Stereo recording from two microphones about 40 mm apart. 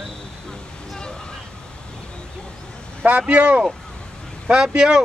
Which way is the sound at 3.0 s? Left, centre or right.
Right.